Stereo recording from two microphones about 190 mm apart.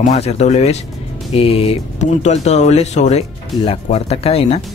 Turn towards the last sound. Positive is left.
turn(degrees=30)  # may be behind; listen again after turning